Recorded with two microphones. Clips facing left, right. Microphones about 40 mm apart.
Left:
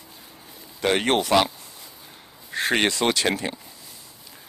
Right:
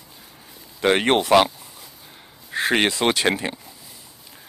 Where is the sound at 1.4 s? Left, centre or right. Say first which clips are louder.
Right 2 dB; centre.